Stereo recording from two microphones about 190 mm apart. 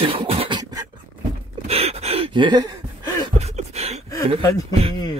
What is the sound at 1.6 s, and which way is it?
Gasp, 30° right (ahead or behind).